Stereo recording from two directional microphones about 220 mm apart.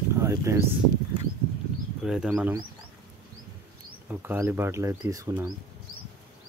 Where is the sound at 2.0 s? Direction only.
5° right (ahead or behind).